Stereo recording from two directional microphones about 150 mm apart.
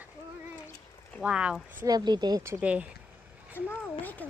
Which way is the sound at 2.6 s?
10° right (ahead or behind).